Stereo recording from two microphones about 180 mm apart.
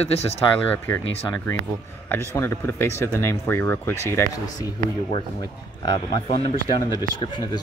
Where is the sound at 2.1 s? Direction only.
10° left (ahead or behind).